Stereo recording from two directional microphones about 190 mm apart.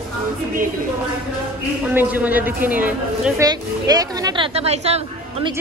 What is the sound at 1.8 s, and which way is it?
Speech, 10° right (ahead or behind).